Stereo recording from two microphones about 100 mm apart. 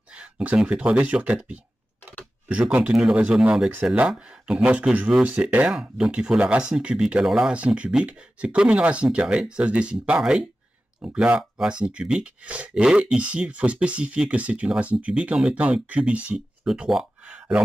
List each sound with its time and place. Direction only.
0.1 s speech: 10° right (ahead or behind)